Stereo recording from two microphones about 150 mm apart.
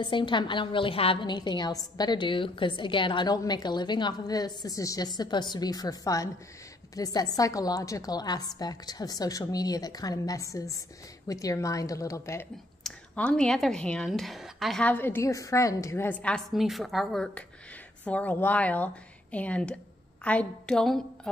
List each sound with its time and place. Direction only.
0.0 s a woman's voice: 30° left (ahead or behind)
12.8 s speech: 10° left (ahead or behind)